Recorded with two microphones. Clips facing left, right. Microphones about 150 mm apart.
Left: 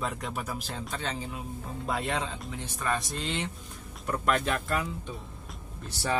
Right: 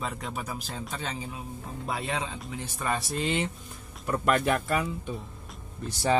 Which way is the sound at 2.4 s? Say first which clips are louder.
Right 1 dB; 5° right (ahead or behind).